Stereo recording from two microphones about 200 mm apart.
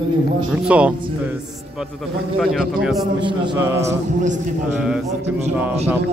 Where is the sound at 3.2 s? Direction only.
25° right (ahead or behind).